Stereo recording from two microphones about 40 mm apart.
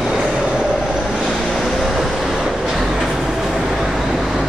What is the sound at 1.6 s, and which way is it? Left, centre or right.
Vehicle, centre.